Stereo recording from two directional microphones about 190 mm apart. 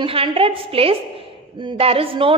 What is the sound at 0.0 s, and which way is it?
A woman's voice, 30° right (ahead or behind).